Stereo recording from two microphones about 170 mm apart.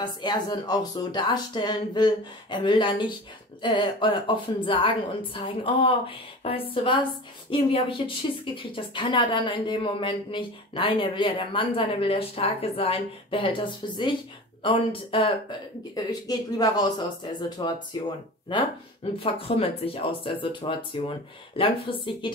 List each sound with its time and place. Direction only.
0.0 s a woman's voice: 25° left (ahead or behind)
19.1 s a woman's voice: 30° left (ahead or behind)